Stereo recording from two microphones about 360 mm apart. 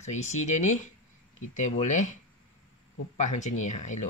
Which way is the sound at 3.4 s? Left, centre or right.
Centre.